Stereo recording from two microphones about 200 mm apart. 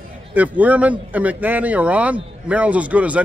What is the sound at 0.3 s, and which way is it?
Speech, 10° right (ahead or behind).